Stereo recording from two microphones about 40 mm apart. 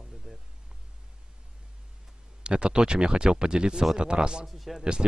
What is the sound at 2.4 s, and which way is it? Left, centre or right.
Speech, right.